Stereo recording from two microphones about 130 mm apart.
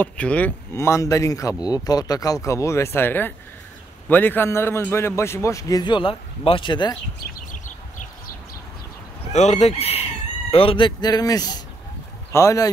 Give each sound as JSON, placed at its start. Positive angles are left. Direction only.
{"t": 0.0, "sound": "a man's voice", "side_deg": 10}
{"t": 0.7, "sound": "a man's voice", "side_deg": 20}
{"t": 9.3, "sound": "speech", "side_deg": 60}